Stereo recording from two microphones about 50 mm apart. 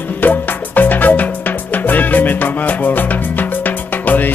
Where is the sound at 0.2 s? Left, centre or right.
Left.